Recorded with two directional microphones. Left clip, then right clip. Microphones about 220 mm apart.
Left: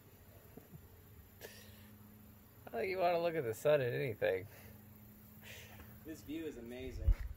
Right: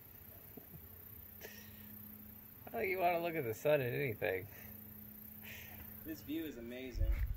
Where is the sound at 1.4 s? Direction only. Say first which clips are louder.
Even; 25° left (ahead or behind).